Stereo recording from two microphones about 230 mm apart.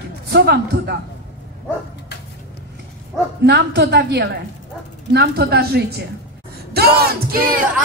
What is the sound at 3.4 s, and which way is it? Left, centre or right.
A woman's voice, right.